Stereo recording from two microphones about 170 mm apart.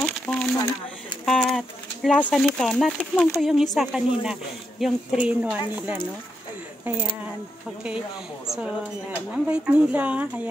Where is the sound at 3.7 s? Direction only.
5° right (ahead or behind).